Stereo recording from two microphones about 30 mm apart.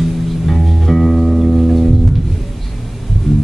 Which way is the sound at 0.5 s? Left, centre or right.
Centre.